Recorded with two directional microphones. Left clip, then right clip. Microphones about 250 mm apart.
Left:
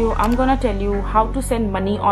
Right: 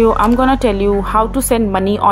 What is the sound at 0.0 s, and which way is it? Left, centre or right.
Speech, right.